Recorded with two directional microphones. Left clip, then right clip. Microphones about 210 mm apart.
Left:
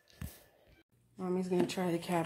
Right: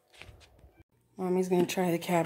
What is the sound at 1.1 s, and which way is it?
Speech, 50° right (ahead or behind).